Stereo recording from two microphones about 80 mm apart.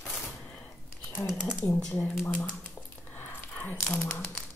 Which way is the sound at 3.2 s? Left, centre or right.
Left.